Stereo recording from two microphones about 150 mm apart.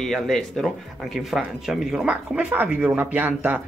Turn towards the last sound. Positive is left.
turn(degrees=-10)  # may be behind; listen again after turning